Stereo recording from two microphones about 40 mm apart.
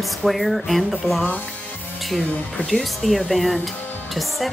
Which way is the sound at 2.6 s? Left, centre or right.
Centre.